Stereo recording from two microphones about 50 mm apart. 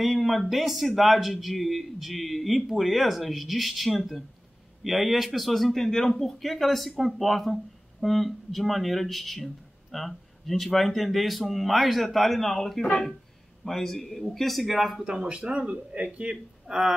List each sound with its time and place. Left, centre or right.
0.0 s speech: centre
15.0 s speech: right